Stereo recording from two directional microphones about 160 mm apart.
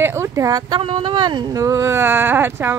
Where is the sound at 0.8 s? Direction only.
35° right (ahead or behind).